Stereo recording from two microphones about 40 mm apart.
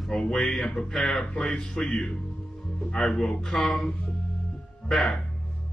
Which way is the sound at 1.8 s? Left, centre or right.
Left.